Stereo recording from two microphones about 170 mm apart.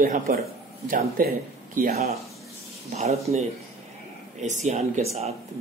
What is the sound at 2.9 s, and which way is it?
Speech, 40° right (ahead or behind).